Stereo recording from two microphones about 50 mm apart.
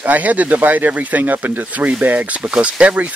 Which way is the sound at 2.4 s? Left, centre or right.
Centre.